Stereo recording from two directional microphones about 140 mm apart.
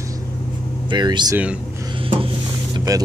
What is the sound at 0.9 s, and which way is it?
Speech, 30° right (ahead or behind).